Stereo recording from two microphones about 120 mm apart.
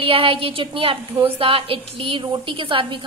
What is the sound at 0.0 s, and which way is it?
A woman's voice, 50° right (ahead or behind).